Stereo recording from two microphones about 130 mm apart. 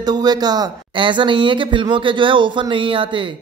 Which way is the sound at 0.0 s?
30° right (ahead or behind).